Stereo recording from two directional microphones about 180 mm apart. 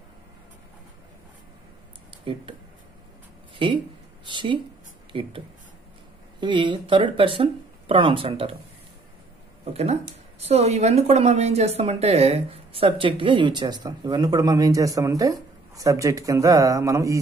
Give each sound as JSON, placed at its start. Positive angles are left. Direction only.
{"t": 2.3, "sound": "speech", "side_deg": -30}
{"t": 3.5, "sound": "a woman's voice", "side_deg": -25}
{"t": 6.4, "sound": "speech", "side_deg": -25}
{"t": 10.4, "sound": "a woman's voice", "side_deg": -35}